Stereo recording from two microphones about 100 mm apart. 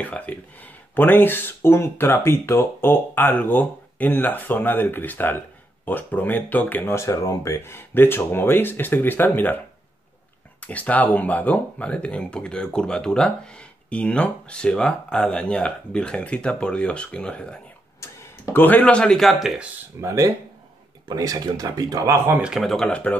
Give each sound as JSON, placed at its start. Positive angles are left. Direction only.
{"t": 0.0, "sound": "speech", "side_deg": 15}
{"t": 10.6, "sound": "speech", "side_deg": 15}
{"t": 18.0, "sound": "speech", "side_deg": 25}
{"t": 20.0, "sound": "speech", "side_deg": -30}
{"t": 22.4, "sound": "speech", "side_deg": 0}